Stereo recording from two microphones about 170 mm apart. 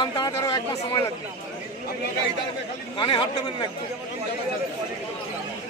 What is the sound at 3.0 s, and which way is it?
Speech, 30° left (ahead or behind).